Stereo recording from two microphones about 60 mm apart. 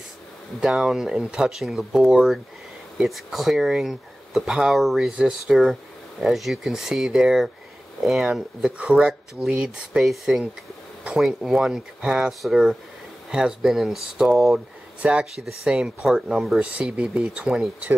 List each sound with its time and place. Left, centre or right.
0.6 s speech: centre
15.0 s speech: right
15.7 s speech: centre